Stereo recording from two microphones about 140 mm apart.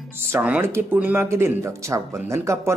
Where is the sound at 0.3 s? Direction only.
15° right (ahead or behind).